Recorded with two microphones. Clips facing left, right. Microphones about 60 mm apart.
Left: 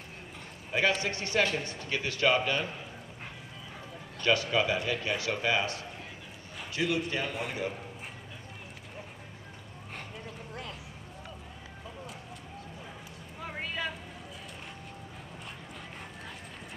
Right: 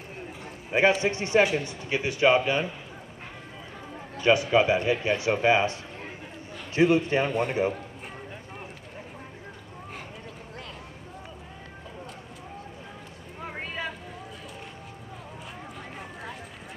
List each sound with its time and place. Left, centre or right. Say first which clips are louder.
0.7 s a man's voice: right 6 dB; right
4.2 s a man's voice: right 6 dB; centre
13.5 s vehicle: right 1 dB; right